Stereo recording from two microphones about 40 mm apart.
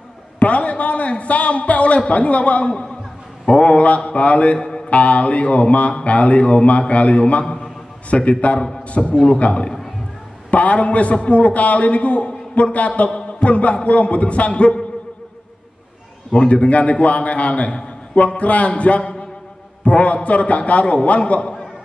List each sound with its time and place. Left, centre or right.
0.4 s a man's voice: left
4.6 s mantra: centre
4.8 s a man's voice: left
7.4 s a sound: centre
8.1 s a man's voice: left
10.5 s a man's voice: left
16.3 s a man's voice: left